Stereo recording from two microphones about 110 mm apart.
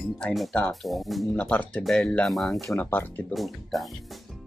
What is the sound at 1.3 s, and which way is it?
Speech, 15° left (ahead or behind).